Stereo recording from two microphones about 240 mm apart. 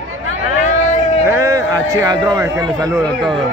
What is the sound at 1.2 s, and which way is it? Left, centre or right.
A man's voice, centre.